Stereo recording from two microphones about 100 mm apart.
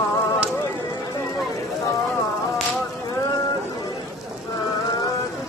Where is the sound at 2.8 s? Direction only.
35° left (ahead or behind).